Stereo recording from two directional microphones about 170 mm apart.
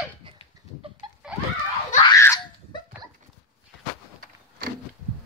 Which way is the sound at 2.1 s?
20° left (ahead or behind).